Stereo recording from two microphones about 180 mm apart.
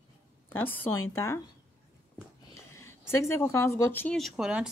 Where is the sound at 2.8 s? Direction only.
15° left (ahead or behind); by 4.6 s 5° right (ahead or behind).